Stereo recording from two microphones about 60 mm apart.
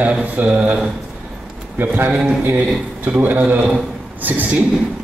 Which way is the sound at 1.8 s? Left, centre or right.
Right.